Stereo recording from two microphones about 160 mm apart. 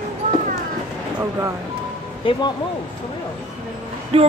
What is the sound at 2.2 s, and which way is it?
Speech, 35° left (ahead or behind).